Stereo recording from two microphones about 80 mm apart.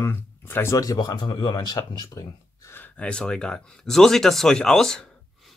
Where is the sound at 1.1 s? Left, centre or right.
Left.